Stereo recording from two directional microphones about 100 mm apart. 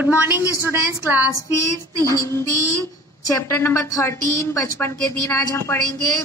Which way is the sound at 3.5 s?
25° left (ahead or behind).